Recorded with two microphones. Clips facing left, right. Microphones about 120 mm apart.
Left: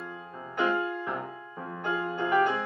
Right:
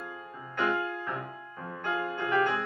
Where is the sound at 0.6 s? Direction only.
15° left (ahead or behind).